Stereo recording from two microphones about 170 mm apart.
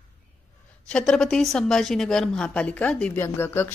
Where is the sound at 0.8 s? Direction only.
5° left (ahead or behind).